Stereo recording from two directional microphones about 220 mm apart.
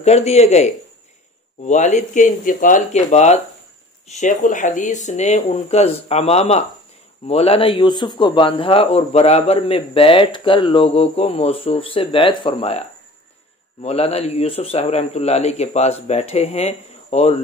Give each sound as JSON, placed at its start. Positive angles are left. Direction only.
{"t": 0.0, "sound": "speech", "side_deg": 30}
{"t": 1.7, "sound": "speech", "side_deg": 35}
{"t": 13.8, "sound": "speech", "side_deg": 30}